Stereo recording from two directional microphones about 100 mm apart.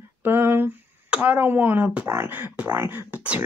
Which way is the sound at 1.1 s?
15° right (ahead or behind).